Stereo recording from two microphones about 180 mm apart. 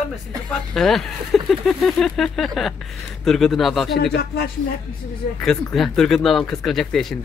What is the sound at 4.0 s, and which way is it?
Speech, 60° left (ahead or behind).